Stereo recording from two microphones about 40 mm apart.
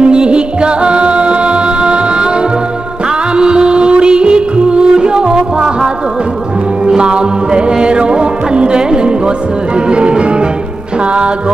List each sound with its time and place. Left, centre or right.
0.0 s music: right
3.3 s music: right
7.0 s music: right